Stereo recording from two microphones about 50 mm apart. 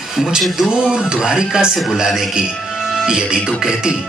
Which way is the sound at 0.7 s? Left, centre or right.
Centre.